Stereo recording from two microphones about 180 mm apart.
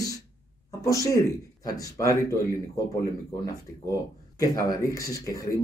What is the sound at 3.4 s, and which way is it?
Speech, 20° left (ahead or behind).